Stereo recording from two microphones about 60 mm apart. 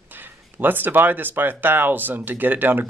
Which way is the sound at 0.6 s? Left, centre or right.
Right.